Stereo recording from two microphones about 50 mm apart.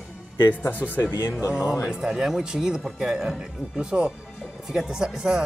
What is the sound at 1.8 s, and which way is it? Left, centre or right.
Speech, centre.